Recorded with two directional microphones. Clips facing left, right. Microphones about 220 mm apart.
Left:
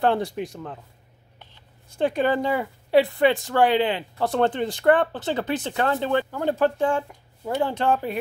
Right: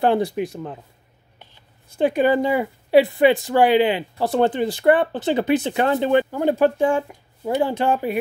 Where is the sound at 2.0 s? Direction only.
10° right (ahead or behind).